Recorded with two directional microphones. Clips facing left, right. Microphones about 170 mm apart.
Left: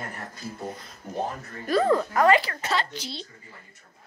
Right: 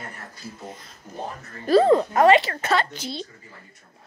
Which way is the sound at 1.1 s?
60° left (ahead or behind).